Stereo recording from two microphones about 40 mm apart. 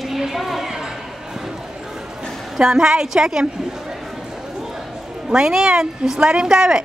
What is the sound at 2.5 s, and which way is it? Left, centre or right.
Speech, centre.